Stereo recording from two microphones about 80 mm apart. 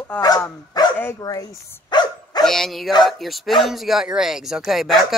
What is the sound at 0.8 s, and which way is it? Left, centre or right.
Dog, left.